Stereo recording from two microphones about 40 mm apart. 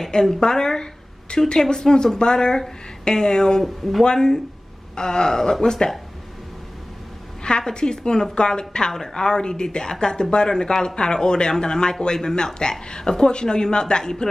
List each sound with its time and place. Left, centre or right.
0.1 s a woman's voice: centre
7.4 s a woman's voice: left